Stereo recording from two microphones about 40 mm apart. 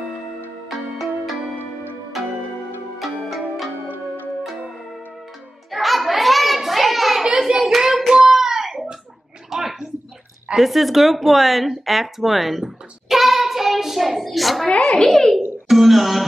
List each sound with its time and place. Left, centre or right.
0.7 s music: centre
3.0 s music: centre
5.7 s a sound: centre
7.3 s hands: centre
9.5 s a sound: centre
10.5 s a child's voice: centre
15.7 s throat clearing: centre